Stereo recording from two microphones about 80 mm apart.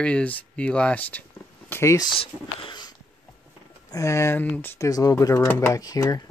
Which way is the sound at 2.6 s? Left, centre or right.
Left.